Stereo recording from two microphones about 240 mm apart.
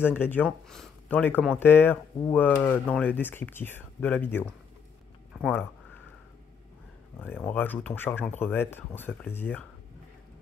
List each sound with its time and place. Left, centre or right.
0.2 s speech: centre
7.2 s speech: centre